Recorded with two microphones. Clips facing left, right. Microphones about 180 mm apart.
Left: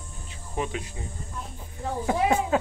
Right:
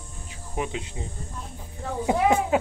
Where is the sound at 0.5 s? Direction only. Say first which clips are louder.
Even; 15° right (ahead or behind).